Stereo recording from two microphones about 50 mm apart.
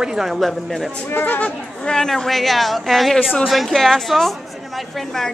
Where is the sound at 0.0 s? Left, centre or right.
Centre.